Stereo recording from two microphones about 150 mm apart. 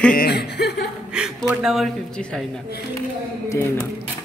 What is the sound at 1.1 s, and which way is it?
Speech, 5° right (ahead or behind).